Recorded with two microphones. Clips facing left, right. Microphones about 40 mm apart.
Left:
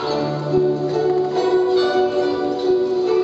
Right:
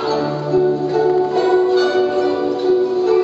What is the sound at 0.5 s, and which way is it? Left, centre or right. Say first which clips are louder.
Music: right 3 dB; centre.